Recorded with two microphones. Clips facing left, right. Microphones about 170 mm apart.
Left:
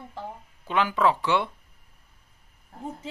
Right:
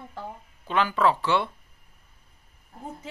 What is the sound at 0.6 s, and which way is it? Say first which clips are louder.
Speech: even; 15° left (ahead or behind).